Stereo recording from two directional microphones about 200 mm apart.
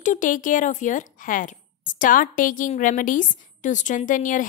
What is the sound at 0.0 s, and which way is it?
Speech, 40° left (ahead or behind).